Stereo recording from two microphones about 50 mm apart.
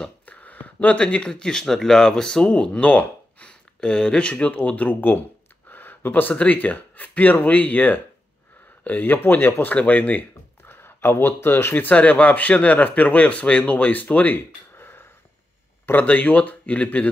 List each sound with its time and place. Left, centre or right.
0.2 s speech: left
5.7 s a sound: left
6.3 s speech: left
10.6 s a sound: left
11.7 s speech: left
15.9 s speech: left